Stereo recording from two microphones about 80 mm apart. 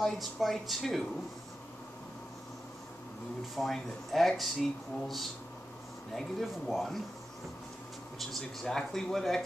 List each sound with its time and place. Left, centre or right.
0.0 s speech: centre
3.5 s speech: centre
8.2 s speech: centre